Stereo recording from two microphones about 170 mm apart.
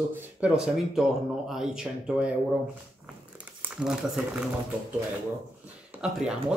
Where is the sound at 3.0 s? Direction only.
5° right (ahead or behind).